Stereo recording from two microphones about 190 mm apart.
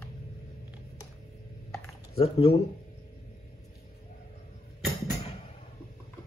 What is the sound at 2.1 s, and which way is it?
Speech, 30° left (ahead or behind).